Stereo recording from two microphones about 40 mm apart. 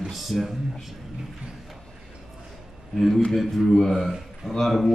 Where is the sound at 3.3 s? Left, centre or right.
Centre.